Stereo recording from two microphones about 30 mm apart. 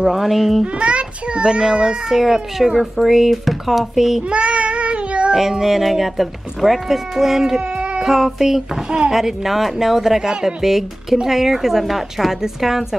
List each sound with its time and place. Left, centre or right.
0.0 s speech: centre
0.7 s a child's voice: right
1.4 s a child's voice: right; by 4.2 s centre
4.3 s cat: right
5.3 s speech: centre